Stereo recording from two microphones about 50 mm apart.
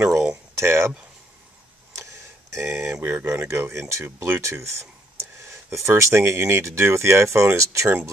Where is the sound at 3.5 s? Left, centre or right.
Right.